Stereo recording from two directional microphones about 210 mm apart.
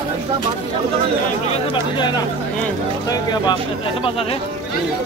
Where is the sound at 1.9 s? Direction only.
20° left (ahead or behind).